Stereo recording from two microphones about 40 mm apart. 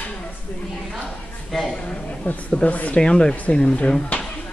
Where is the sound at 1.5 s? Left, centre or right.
Centre.